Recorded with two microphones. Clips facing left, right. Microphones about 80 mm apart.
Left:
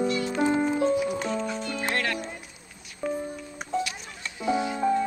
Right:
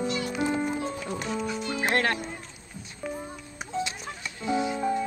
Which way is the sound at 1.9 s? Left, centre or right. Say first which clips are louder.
Right 4 dB; right.